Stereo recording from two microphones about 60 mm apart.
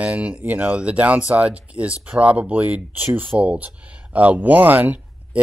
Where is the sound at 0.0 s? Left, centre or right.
Right.